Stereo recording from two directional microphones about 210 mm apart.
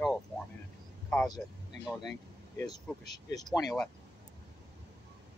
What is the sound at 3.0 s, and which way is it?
Speech, 20° left (ahead or behind).